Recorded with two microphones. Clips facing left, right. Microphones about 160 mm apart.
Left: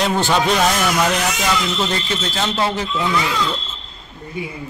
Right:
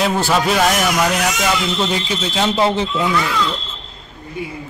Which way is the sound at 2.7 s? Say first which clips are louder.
Right 3 dB; 25° right (ahead or behind).